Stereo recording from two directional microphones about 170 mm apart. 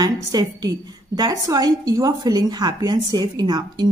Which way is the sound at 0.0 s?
25° right (ahead or behind).